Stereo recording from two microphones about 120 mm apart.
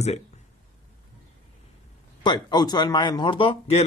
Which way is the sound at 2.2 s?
35° left (ahead or behind).